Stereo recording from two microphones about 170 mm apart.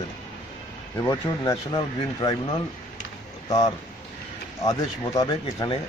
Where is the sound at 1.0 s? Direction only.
20° left (ahead or behind).